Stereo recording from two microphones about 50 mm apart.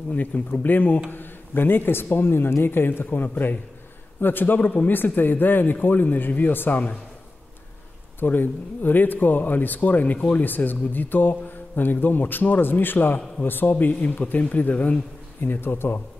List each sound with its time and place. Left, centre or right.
0.1 s speech: left
8.2 s speech: left
15.4 s speech: left